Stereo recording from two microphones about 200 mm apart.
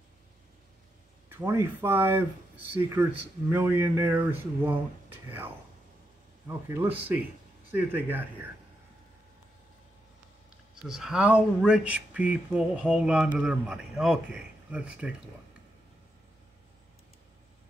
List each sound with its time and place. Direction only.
1.3 s speech: 10° right (ahead or behind)
10.9 s speech: 5° right (ahead or behind)